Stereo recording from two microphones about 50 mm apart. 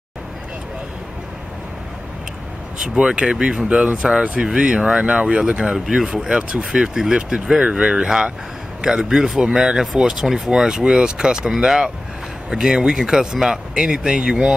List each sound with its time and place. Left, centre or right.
2.8 s speech: centre